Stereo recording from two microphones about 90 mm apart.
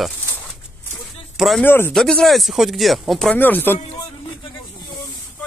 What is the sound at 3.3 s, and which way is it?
Speech, 20° left (ahead or behind).